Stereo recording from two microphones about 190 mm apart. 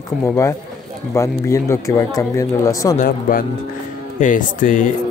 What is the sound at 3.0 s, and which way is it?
Speech, 45° left (ahead or behind).